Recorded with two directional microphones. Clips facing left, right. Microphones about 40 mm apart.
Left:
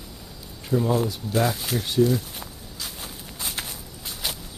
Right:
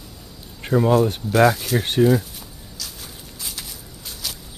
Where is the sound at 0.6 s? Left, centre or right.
Right.